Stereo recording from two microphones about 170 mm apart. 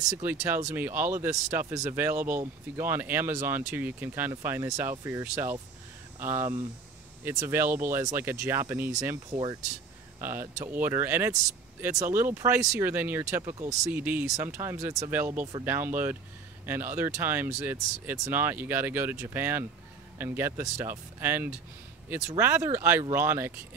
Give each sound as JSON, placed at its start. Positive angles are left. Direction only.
{"t": 0.2, "sound": "speech", "side_deg": -15}
{"t": 13.9, "sound": "speech", "side_deg": -10}